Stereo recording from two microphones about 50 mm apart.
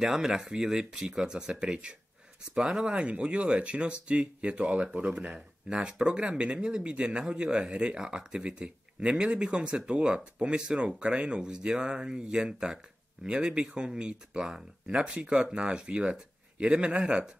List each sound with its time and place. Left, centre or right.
0.0 s speech: centre